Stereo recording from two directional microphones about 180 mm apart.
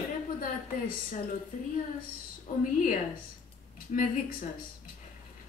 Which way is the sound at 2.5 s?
45° left (ahead or behind).